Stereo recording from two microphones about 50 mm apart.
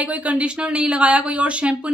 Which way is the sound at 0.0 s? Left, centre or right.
Right.